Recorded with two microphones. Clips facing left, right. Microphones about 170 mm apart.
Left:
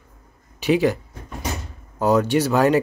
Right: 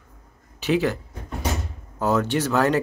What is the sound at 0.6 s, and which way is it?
Speech, 15° left (ahead or behind).